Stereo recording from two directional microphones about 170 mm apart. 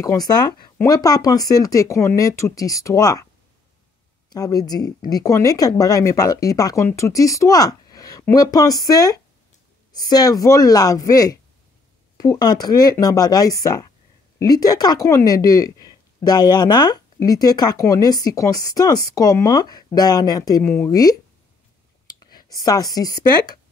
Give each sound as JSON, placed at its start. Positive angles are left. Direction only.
{"t": 0.0, "sound": "speech", "side_deg": 20}
{"t": 4.3, "sound": "speech", "side_deg": 20}